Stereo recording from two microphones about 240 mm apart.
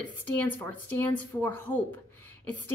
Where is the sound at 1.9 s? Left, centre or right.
Right.